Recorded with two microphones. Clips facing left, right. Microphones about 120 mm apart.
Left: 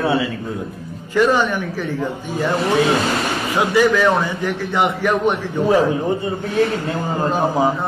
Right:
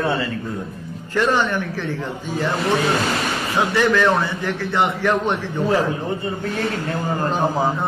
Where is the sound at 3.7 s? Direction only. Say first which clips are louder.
Left 3 dB; 10° left (ahead or behind).